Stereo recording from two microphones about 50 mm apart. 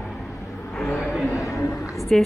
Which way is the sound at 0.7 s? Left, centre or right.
Centre.